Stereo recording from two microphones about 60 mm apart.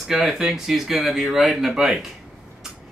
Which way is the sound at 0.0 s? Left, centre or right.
Centre.